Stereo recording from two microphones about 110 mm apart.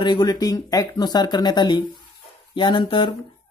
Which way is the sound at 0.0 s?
40° left (ahead or behind).